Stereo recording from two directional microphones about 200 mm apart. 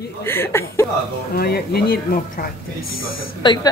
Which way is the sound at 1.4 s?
50° left (ahead or behind).